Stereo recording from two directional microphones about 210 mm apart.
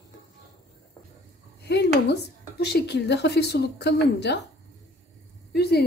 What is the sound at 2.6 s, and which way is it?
Speech, 55° left (ahead or behind).